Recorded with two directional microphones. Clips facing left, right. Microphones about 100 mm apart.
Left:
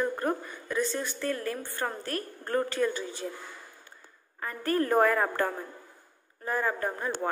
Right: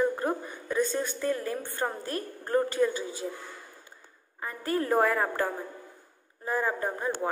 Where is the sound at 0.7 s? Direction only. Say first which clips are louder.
Right 2 dB; 35° right (ahead or behind).